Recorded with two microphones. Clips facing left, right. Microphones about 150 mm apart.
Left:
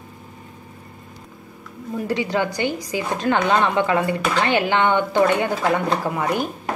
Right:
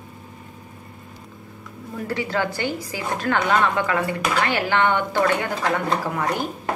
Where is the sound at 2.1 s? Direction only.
15° left (ahead or behind).